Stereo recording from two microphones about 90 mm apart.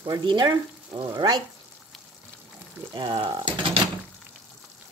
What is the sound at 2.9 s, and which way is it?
Frying, 50° right (ahead or behind).